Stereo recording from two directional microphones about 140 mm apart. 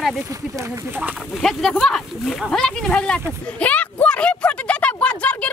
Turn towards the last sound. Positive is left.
turn(degrees=10)  # may be behind; listen again after turning